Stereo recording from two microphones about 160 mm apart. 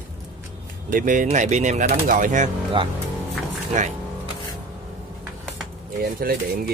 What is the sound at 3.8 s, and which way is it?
Speech, 50° right (ahead or behind).